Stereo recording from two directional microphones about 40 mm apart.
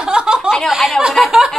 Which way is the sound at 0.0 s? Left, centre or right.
Centre.